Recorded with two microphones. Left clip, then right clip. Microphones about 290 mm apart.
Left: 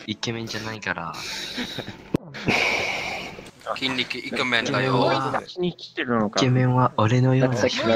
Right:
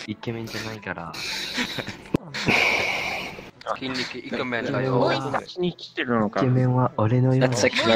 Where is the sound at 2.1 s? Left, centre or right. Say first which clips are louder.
Even; centre.